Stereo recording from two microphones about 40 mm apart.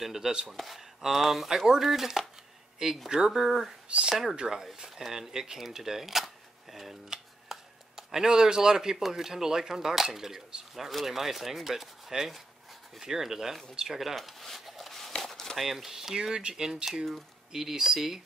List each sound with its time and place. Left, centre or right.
0.0 s speech: centre
0.5 s speech: centre
3.1 s speech: centre
3.4 s speech: centre
13.7 s a sound: centre
15.5 s speech: centre
16.7 s speech: centre